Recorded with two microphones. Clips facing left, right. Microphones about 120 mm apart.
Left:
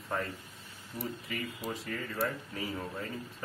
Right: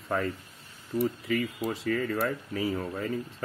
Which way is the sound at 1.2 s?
90° right.